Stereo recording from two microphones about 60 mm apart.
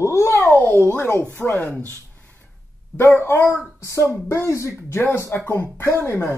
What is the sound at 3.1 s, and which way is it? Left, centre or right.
Speech, left.